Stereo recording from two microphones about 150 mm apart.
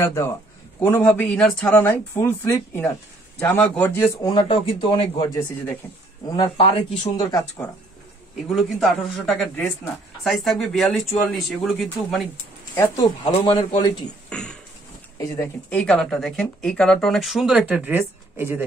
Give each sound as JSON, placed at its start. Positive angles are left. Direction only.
{"t": 0.0, "sound": "a man's voice", "side_deg": 20}
{"t": 1.0, "sound": "speech", "side_deg": 5}
{"t": 4.3, "sound": "a man's voice", "side_deg": 35}
{"t": 7.2, "sound": "speech", "side_deg": 20}
{"t": 8.5, "sound": "speech", "side_deg": 0}
{"t": 12.8, "sound": "a man's voice", "side_deg": 30}
{"t": 13.7, "sound": "speech", "side_deg": 30}
{"t": 14.3, "sound": "speech", "side_deg": 5}
{"t": 15.1, "sound": "speech", "side_deg": 20}
{"t": 15.7, "sound": "speech", "side_deg": 5}